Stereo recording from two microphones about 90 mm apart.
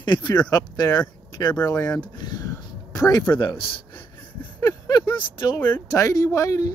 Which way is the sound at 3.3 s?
65° left (ahead or behind).